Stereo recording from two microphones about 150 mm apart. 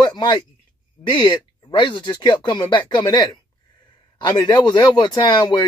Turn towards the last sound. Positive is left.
turn(degrees=30)  # may be behind; listen again after turning